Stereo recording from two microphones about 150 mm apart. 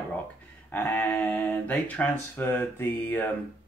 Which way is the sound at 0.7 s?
10° left (ahead or behind).